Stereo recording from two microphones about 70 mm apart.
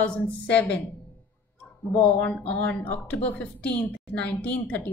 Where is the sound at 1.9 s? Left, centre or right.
Centre.